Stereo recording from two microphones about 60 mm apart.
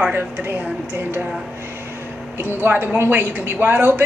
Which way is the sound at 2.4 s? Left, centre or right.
Right.